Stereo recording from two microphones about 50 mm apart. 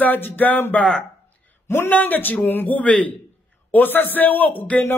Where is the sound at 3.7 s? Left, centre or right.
Left.